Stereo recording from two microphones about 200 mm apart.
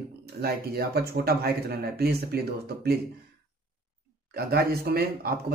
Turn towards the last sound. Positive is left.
turn(degrees=-50)  # may be behind; listen again after turning